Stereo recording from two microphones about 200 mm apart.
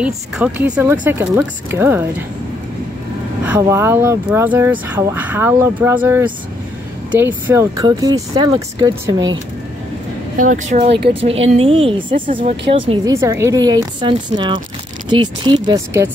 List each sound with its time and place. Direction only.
0.0 s speech: 5° right (ahead or behind)
3.4 s speech: 10° right (ahead or behind)
10.3 s speech: 40° right (ahead or behind)
13.1 s speech: 15° right (ahead or behind)